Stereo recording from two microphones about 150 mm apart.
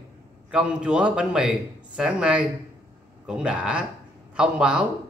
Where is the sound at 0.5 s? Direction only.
5° right (ahead or behind).